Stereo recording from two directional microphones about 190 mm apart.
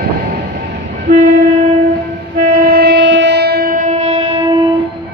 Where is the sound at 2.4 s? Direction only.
55° right (ahead or behind); by 4.3 s 35° right (ahead or behind).